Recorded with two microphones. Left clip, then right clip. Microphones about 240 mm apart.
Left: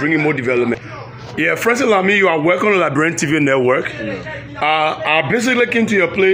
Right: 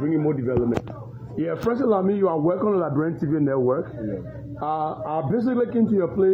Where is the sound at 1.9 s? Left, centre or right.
Left.